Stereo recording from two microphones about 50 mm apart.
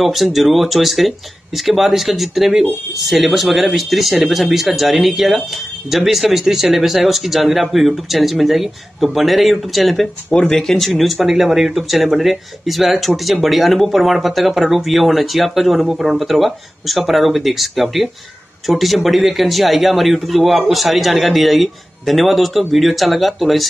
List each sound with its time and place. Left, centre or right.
0.0 s speech: centre